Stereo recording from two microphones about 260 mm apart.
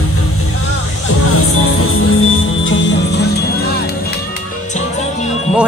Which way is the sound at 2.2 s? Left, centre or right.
Left.